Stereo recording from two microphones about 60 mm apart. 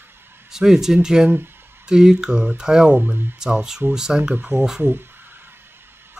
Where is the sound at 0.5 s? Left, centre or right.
Centre.